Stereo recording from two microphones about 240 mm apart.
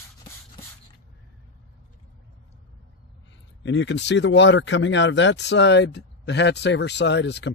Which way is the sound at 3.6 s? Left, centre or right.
Left.